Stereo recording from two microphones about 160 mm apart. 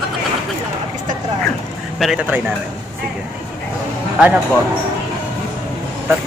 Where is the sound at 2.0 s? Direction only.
5° right (ahead or behind).